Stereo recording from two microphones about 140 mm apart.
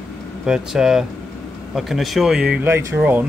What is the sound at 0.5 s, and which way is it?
Speech, 5° right (ahead or behind).